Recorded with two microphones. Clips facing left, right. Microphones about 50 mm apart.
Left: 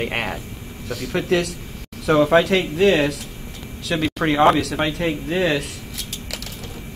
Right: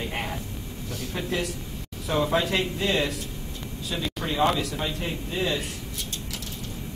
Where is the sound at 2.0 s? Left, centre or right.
Left.